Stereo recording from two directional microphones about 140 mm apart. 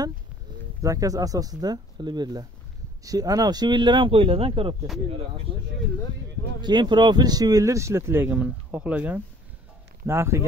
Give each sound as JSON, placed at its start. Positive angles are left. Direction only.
{"t": 0.8, "sound": "speech", "side_deg": -25}
{"t": 6.6, "sound": "speech", "side_deg": -35}